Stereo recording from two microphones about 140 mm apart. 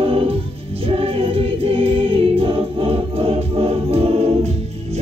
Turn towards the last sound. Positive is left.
turn(degrees=-45)  # may be behind; listen again after turning